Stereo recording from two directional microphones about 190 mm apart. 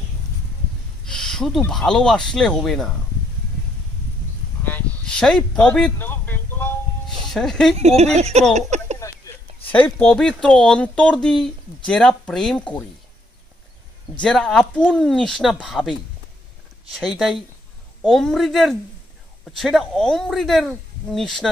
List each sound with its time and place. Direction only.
1.0 s speech: 5° left (ahead or behind)
4.6 s a sound: 5° left (ahead or behind)
7.1 s music: centre (ahead or behind)
7.8 s speech: 35° right (ahead or behind)
8.5 s a sound: 35° right (ahead or behind)
9.8 s speech: 5° left (ahead or behind)
14.2 s speech: 5° left (ahead or behind)